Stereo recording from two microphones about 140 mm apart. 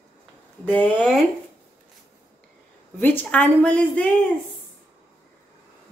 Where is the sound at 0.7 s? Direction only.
15° left (ahead or behind).